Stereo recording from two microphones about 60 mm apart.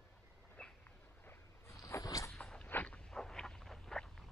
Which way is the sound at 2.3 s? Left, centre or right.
Centre.